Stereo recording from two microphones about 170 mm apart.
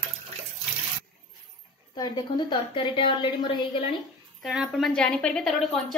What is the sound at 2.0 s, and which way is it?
A woman's voice, 25° left (ahead or behind).